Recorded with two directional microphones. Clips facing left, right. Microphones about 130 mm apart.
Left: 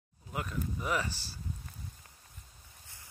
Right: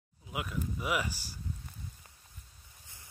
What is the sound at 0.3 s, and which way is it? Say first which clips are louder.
Speech: even; 5° right (ahead or behind).